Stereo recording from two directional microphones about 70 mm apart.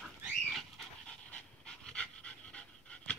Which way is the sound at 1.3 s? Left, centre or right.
Centre.